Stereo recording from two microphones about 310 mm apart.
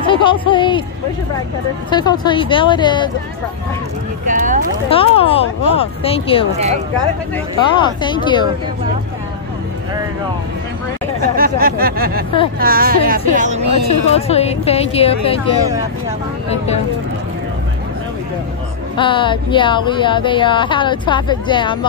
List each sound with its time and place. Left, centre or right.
0.0 s speech: centre
1.9 s speech: centre
4.3 s a sound: right
4.8 s speech: centre
6.5 s a sound: right
7.7 s speech: centre
11.3 s a sound: right
13.8 s a woman's voice: centre
18.9 s speech: centre